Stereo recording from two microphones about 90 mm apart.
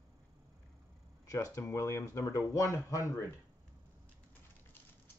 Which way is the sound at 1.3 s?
40° left (ahead or behind).